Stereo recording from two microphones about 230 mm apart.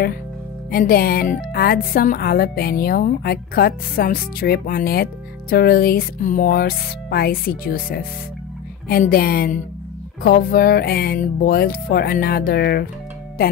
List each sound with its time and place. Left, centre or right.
0.7 s speech: left